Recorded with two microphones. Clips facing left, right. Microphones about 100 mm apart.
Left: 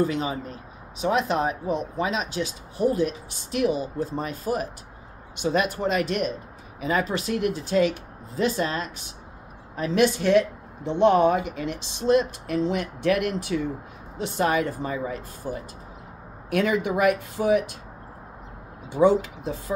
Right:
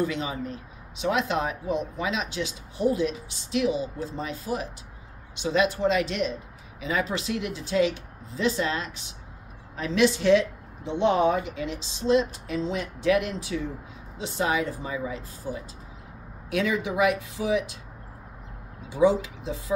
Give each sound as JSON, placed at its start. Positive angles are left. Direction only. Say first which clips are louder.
{"t": 0.0, "sound": "a woman's voice", "louder": "left 3 dB", "side_deg": 40}
{"t": 18.9, "sound": "speech", "louder": "left 2 dB", "side_deg": 55}